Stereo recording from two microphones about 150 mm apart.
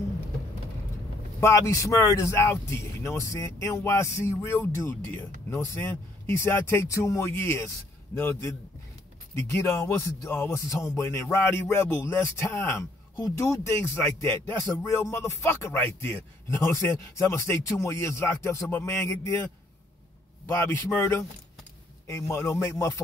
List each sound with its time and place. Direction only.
1.4 s a man's voice: 20° left (ahead or behind)